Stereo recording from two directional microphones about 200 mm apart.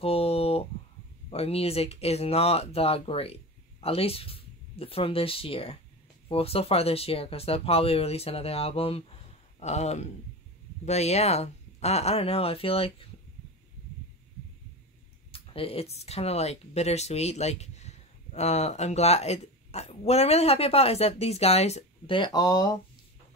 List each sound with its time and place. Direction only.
0.0 s a sound: 30° left (ahead or behind)
1.3 s speech: 30° left (ahead or behind)
15.3 s speech: 30° left (ahead or behind)